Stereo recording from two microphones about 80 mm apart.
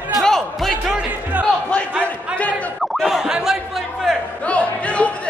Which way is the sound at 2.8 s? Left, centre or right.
Centre.